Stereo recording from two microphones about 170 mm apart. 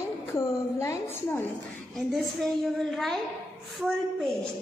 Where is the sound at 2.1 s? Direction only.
Centre (ahead or behind).